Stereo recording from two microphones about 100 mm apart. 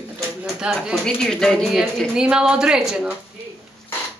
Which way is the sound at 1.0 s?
5° left (ahead or behind).